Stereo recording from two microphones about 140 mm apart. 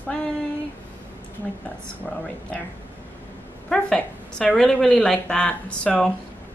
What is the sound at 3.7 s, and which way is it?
A woman's voice, 5° left (ahead or behind).